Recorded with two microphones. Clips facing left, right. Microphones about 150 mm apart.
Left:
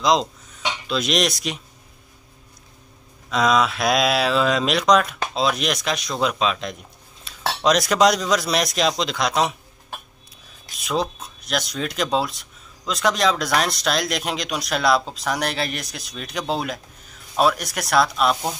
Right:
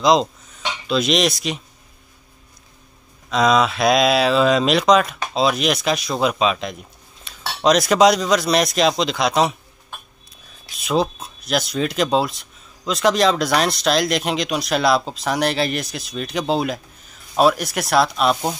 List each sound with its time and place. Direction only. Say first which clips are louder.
0.0 s speech: right 3 dB; centre (ahead or behind)
3.3 s speech: right 2 dB; centre (ahead or behind)
10.9 s speech: right 4 dB; 5° right (ahead or behind)